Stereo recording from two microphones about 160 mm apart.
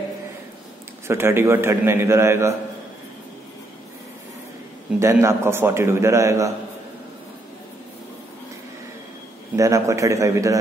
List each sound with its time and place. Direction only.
1.0 s a man's voice: 15° right (ahead or behind)
5.0 s a man's voice: 15° right (ahead or behind)
9.6 s a man's voice: 20° right (ahead or behind)